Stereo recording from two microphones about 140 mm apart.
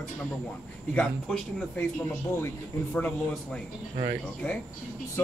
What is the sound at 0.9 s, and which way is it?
Speech, 10° left (ahead or behind).